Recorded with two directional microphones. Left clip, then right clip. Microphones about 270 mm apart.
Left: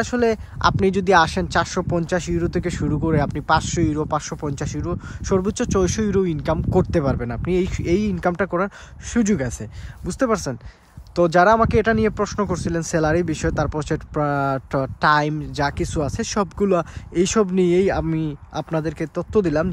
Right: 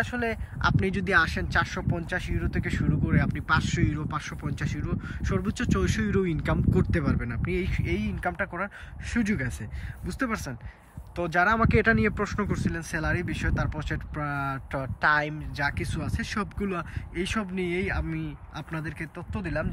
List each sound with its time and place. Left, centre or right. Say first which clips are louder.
0.0 s speech: left 9 dB; centre